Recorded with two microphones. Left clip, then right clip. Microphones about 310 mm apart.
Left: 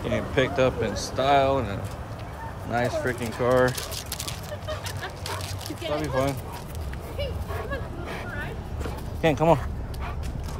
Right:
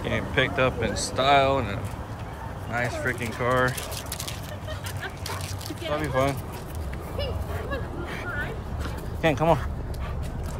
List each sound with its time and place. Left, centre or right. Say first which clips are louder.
0.0 s speech: even; centre
5.9 s speech: right 1 dB; centre
7.7 s a sound: right 1 dB; centre
9.2 s speech: left 1 dB; centre